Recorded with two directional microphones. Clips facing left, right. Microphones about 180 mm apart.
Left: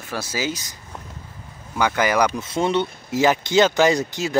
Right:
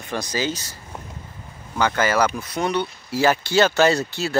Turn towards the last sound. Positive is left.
turn(degrees=15)  # may be behind; listen again after turning